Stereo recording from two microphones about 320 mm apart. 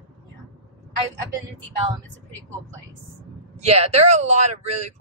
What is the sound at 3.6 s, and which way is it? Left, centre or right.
Speech, centre.